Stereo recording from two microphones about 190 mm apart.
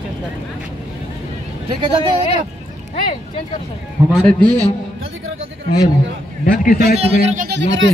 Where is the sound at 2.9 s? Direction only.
25° left (ahead or behind).